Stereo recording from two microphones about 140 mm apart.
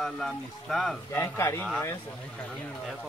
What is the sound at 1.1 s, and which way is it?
Speech, 20° left (ahead or behind).